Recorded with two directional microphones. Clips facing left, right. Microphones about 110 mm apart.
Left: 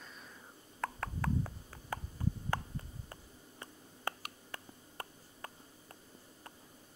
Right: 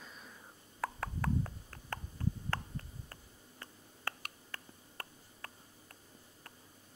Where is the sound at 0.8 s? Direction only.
Centre (ahead or behind).